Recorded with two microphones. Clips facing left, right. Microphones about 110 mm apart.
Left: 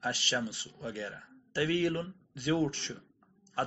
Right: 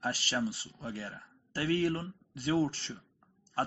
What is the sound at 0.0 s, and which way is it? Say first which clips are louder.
Speech: right 1 dB; 40° right (ahead or behind).